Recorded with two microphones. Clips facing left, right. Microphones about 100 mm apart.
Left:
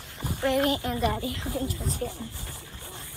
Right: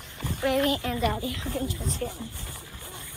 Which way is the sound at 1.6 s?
25° right (ahead or behind).